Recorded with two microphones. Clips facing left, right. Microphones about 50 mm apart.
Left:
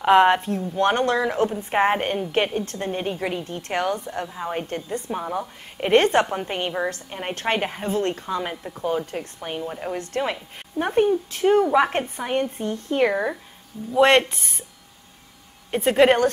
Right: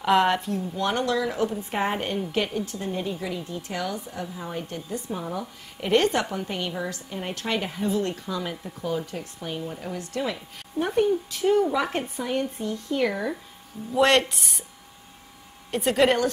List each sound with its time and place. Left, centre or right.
0.0 s a woman's voice: left
13.9 s speech: centre
15.7 s a woman's voice: centre